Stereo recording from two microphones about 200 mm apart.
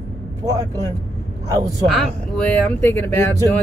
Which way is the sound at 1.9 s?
Centre (ahead or behind).